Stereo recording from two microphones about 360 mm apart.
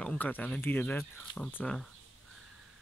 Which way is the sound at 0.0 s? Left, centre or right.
Centre.